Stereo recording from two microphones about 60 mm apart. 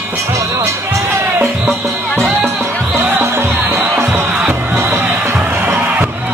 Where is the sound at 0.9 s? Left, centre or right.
Right.